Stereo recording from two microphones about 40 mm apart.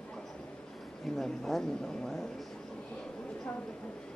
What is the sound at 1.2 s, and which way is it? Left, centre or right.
Speech, centre.